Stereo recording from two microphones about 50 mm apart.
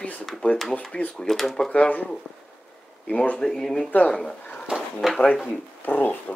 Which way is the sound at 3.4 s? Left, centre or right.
Centre.